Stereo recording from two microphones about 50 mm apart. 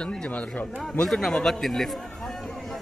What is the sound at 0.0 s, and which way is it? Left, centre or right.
Speech, centre.